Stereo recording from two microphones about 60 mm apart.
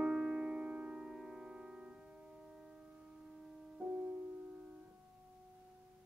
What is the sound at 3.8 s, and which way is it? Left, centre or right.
Music, right.